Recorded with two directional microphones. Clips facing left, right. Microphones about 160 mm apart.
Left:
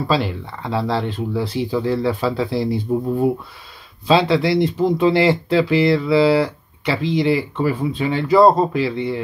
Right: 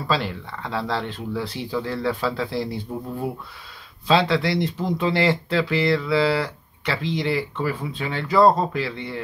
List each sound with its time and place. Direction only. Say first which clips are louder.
0.1 s speech: left 2 dB; 10° left (ahead or behind)
2.9 s speech: left 10 dB; 20° left (ahead or behind)
4.1 s speech: left 4 dB; 10° left (ahead or behind)